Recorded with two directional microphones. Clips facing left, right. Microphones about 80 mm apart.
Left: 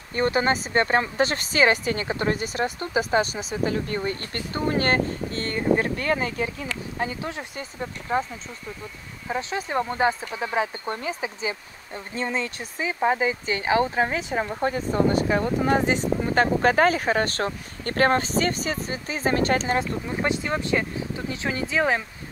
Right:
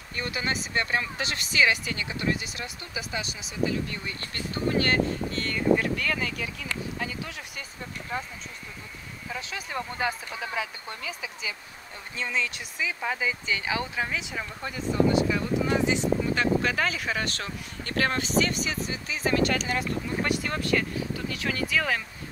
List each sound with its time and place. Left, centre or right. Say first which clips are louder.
0.1 s speech: left 9 dB; left
9.3 s speech: left 8 dB; left
20.2 s speech: left 5 dB; left